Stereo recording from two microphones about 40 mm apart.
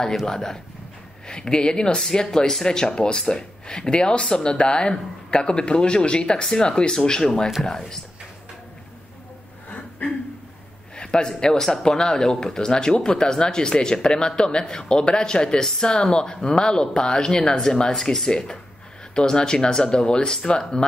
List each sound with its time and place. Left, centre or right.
0.1 s speech: centre
9.7 s a sound: left
11.0 s speech: centre
17.9 s speech: centre
19.1 s speech: centre